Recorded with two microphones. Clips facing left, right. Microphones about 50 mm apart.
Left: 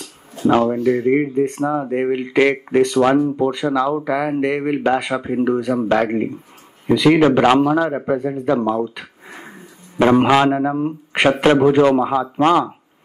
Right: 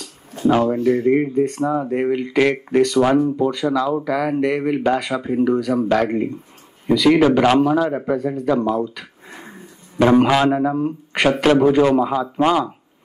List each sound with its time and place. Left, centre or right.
0.0 s a sound: centre
0.8 s speech: centre
3.1 s speech: centre
3.4 s speech: left